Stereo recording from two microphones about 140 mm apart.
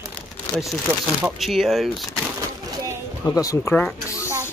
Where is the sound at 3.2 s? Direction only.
25° left (ahead or behind).